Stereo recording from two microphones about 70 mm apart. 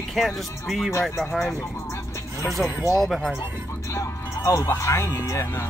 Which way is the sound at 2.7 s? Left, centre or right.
Left.